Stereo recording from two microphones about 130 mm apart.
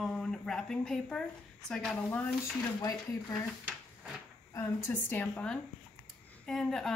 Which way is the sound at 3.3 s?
5° right (ahead or behind).